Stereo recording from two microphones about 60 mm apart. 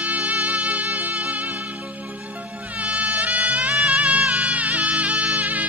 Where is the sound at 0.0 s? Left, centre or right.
Right.